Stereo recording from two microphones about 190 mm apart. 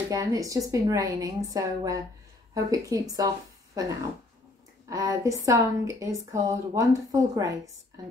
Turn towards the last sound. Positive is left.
turn(degrees=-15)  # may be behind; listen again after turning